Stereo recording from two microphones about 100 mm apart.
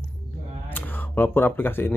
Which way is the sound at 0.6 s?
20° left (ahead or behind).